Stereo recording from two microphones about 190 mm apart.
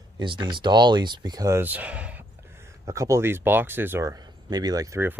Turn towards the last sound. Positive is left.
turn(degrees=-15)  # may be behind; listen again after turning